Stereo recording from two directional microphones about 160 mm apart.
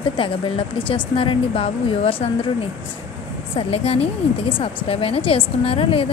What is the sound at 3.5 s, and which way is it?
A woman's voice, 40° left (ahead or behind).